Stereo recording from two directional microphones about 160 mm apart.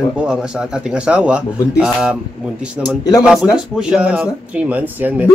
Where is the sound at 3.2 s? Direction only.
5° right (ahead or behind).